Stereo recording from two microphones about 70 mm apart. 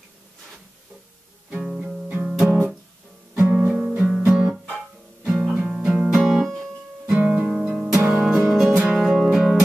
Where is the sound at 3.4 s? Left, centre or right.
Centre.